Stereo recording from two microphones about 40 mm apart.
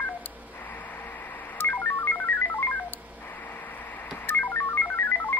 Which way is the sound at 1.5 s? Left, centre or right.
Left.